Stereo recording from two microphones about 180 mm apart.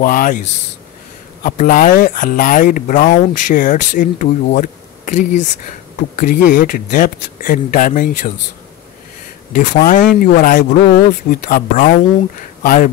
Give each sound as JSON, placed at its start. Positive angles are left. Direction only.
{"t": 0.0, "sound": "speech", "side_deg": 50}
{"t": 9.5, "sound": "speech", "side_deg": 50}